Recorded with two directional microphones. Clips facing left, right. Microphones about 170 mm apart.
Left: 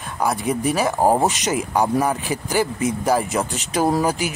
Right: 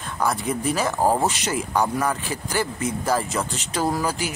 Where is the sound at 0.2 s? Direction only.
15° left (ahead or behind).